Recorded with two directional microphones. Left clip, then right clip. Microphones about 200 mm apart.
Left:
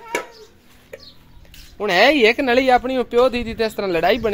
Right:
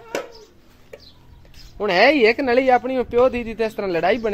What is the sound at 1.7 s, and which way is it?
Speech, 5° left (ahead or behind).